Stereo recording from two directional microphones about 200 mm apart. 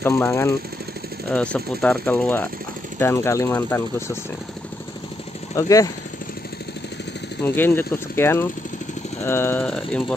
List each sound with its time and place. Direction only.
0.0 s speech: 15° left (ahead or behind)
5.6 s speech: 15° left (ahead or behind)
7.4 s speech: 10° left (ahead or behind)